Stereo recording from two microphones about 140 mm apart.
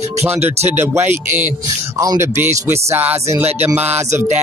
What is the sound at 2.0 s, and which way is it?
Speech, 20° right (ahead or behind).